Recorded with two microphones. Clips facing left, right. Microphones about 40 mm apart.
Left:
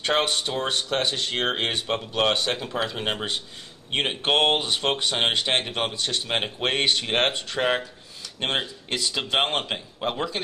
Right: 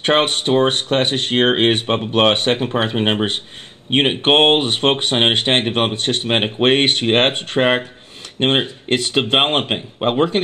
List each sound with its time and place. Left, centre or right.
0.0 s speech: right